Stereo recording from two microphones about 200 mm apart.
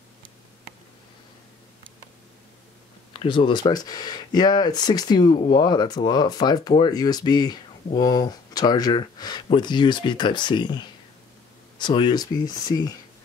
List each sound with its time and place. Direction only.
3.1 s speech: 25° left (ahead or behind)